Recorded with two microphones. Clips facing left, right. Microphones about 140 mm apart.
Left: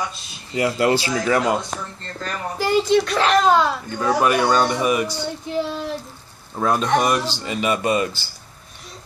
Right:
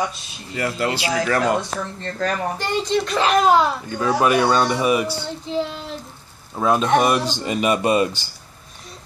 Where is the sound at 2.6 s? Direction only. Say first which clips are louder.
Left 9 dB; 5° left (ahead or behind).